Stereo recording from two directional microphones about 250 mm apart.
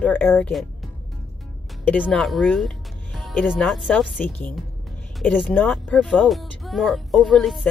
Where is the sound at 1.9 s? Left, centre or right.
Centre.